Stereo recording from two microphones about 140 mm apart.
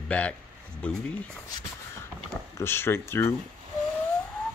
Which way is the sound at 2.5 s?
15° left (ahead or behind).